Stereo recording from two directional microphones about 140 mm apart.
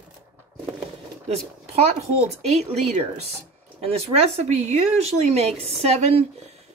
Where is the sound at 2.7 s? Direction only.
50° right (ahead or behind).